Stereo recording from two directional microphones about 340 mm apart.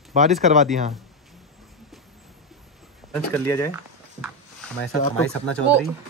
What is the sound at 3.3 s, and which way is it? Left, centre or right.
Speech, centre.